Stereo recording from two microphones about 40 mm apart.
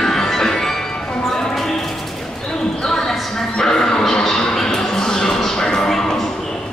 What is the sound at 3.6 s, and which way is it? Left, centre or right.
Music, centre.